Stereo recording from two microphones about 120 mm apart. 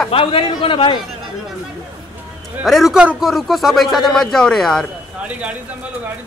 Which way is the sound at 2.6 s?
Centre (ahead or behind).